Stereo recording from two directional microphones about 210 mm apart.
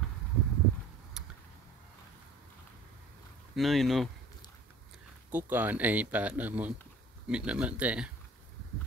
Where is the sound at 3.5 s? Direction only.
Centre (ahead or behind).